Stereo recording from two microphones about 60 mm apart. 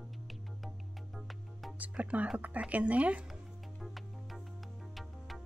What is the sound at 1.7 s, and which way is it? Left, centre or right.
Music, right.